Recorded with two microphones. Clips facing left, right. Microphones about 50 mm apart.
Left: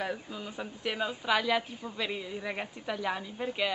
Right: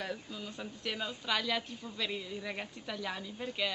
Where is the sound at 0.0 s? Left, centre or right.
Centre.